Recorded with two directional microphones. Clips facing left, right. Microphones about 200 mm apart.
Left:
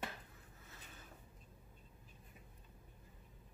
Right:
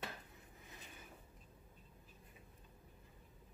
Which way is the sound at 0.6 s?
15° right (ahead or behind).